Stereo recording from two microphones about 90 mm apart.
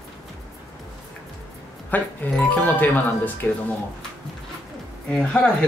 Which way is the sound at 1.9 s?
20° left (ahead or behind).